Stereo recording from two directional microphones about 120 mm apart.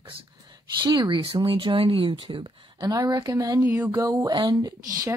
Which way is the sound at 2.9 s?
30° right (ahead or behind).